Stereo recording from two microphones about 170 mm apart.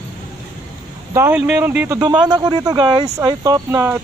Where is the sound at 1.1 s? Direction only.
10° right (ahead or behind).